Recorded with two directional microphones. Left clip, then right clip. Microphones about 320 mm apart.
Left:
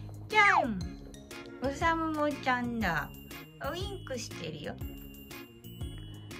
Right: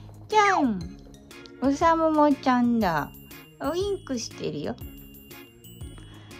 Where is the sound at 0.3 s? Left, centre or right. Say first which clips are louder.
Right 4 dB; centre.